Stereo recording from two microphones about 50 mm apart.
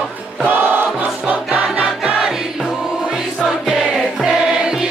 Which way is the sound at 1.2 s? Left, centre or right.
Right.